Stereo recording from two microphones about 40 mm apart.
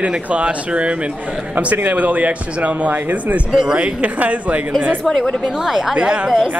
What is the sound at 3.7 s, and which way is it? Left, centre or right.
Speech, right.